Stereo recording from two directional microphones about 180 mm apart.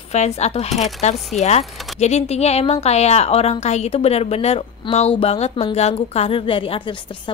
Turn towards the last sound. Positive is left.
turn(degrees=30)  # may be behind; listen again after turning